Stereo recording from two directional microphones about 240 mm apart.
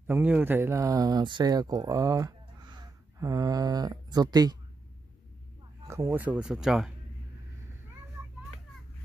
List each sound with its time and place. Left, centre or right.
0.0 s speech: centre
5.9 s speech: centre